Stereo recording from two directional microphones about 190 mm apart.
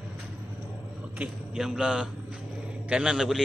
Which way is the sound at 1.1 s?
5° right (ahead or behind).